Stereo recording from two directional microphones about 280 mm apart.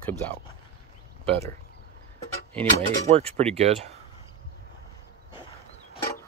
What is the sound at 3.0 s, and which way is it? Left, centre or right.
Speech, right.